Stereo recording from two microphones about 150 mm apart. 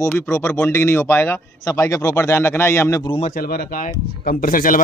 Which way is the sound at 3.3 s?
90° left.